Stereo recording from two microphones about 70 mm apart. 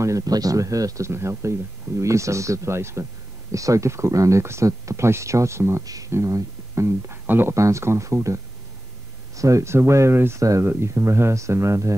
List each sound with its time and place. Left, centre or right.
0.2 s speech: right
3.5 s speech: right
5.9 s speech: right
7.5 s speech: right
9.4 s speech: right